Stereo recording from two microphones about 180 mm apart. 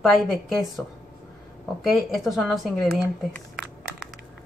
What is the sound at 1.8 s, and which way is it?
Speech, centre (ahead or behind).